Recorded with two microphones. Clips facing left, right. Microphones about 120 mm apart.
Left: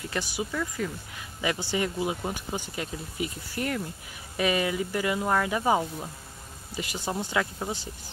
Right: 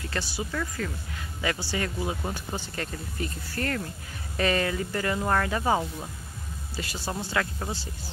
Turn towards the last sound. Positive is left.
turn(degrees=15)  # may be behind; listen again after turning